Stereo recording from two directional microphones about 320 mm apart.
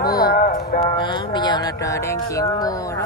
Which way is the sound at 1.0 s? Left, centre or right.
Centre.